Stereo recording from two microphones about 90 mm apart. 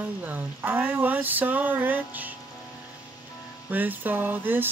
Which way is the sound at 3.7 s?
20° right (ahead or behind).